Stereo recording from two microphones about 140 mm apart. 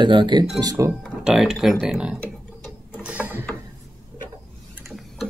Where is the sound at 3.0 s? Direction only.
10° right (ahead or behind).